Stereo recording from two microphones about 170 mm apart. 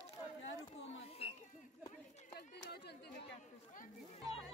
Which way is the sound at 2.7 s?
75° left (ahead or behind).